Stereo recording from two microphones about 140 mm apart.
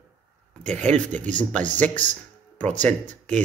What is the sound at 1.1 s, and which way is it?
Speech, 60° right (ahead or behind).